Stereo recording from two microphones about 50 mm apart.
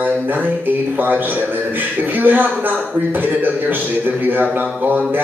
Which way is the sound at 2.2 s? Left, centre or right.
Right.